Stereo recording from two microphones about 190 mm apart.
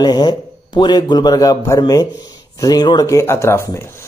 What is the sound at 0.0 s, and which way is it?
Speech, 20° left (ahead or behind).